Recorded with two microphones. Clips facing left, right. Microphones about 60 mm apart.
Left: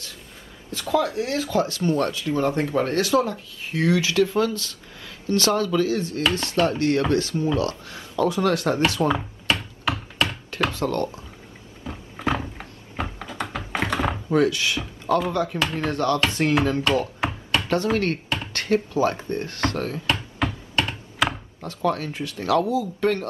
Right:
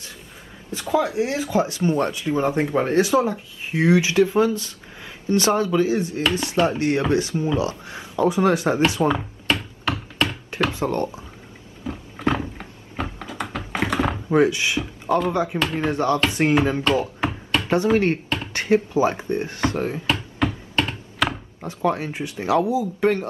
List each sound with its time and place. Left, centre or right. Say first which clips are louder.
0.7 s speech: right 1 dB; centre
9.1 s a sound: right 1 dB; centre
10.7 s speech: right 1 dB; centre
11.8 s a sound: right 3 dB; centre
14.3 s speech: right 2 dB; right
17.2 s chopping: right 1 dB; centre
17.9 s speech: right 4 dB; centre
20.1 s a sound: right 2 dB; centre
21.5 s speech: right 2 dB; centre